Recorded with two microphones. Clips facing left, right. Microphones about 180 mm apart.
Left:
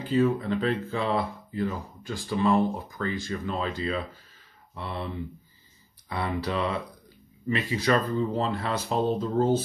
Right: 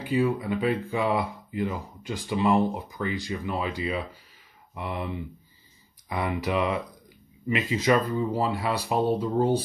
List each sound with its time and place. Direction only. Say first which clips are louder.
0.0 s speech: left 1 dB; 10° right (ahead or behind)